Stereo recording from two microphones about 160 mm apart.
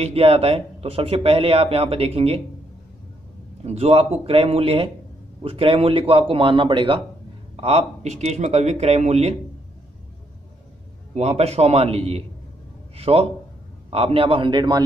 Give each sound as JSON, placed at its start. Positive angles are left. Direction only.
{"t": 0.0, "sound": "speech", "side_deg": -40}
{"t": 3.6, "sound": "speech", "side_deg": -40}
{"t": 7.5, "sound": "speech", "side_deg": -40}
{"t": 11.1, "sound": "speech", "side_deg": -40}